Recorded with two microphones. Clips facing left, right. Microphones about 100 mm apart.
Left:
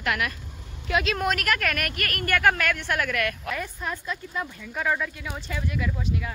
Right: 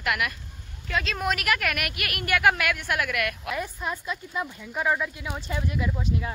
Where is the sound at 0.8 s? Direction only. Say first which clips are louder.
Left 3 dB; 5° left (ahead or behind).